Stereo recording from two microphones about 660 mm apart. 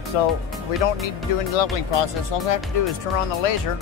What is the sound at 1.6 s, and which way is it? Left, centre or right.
Speech, left.